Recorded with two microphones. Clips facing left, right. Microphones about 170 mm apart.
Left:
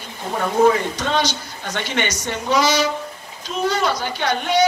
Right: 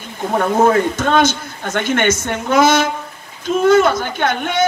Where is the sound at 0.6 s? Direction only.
50° right (ahead or behind).